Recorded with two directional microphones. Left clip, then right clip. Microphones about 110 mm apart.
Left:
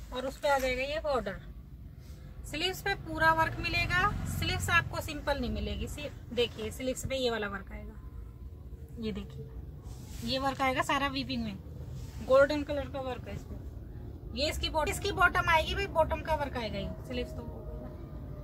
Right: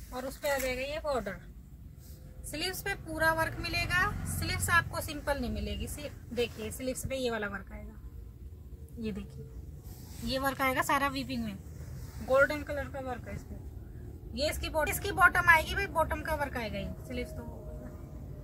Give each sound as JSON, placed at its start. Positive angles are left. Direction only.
{"t": 0.1, "sound": "speech", "side_deg": 0}
{"t": 2.5, "sound": "speech", "side_deg": 5}
{"t": 10.2, "sound": "speech", "side_deg": -5}
{"t": 12.3, "sound": "speech", "side_deg": 45}
{"t": 14.3, "sound": "speech", "side_deg": 20}
{"t": 14.7, "sound": "speech", "side_deg": 5}